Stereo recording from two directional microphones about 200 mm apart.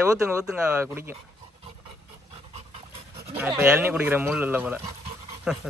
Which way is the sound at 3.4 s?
5° right (ahead or behind).